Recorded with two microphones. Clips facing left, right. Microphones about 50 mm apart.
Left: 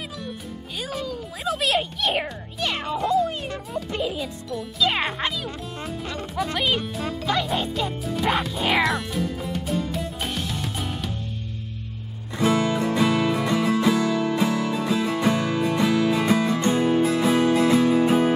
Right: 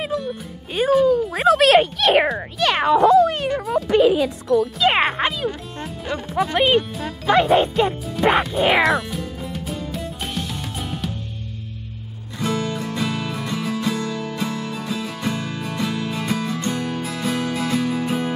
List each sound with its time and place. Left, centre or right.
0.7 s speech: right
1.3 s speech: right
4.9 s music: right
6.0 s music: centre
7.5 s speech: right
8.2 s music: centre
8.8 s music: centre
12.4 s music: left